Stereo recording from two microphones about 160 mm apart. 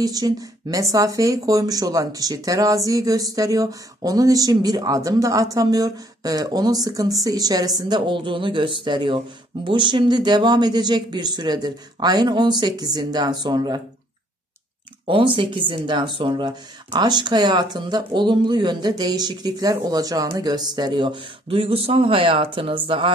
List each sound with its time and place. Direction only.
0.0 s speech: 25° right (ahead or behind)
15.0 s speech: 30° right (ahead or behind)